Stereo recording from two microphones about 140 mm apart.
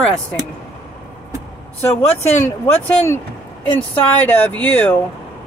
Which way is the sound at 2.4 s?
15° left (ahead or behind).